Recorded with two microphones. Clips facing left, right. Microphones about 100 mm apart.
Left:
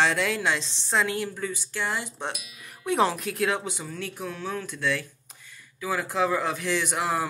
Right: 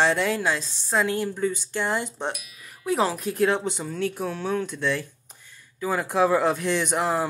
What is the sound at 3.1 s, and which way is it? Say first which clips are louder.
Speech: right 4 dB; 25° right (ahead or behind).